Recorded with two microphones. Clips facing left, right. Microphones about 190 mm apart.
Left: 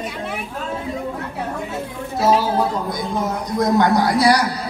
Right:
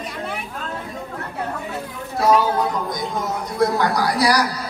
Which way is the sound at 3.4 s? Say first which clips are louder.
Left 3 dB; 15° left (ahead or behind).